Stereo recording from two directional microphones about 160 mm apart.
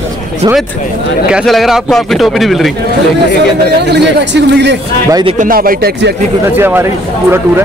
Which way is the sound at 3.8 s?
90° right.